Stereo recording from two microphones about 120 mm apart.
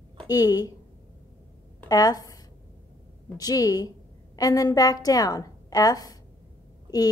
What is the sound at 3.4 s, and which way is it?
A woman's voice, 30° left (ahead or behind).